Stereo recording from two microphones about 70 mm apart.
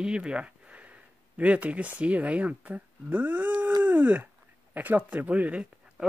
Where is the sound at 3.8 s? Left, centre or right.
Right.